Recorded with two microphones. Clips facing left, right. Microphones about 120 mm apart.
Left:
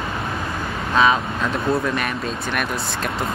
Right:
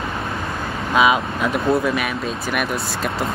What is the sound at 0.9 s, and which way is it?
Speech, 10° right (ahead or behind).